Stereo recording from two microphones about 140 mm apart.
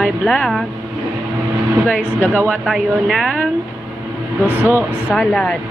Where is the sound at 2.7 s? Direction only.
Centre (ahead or behind).